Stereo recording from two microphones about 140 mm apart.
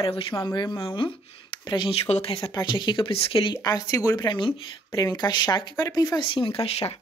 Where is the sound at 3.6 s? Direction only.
25° left (ahead or behind).